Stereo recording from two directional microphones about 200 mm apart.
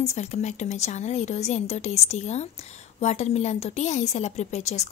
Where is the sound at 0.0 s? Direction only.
35° left (ahead or behind).